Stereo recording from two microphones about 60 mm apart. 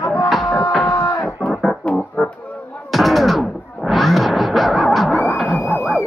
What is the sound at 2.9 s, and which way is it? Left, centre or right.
Music, centre.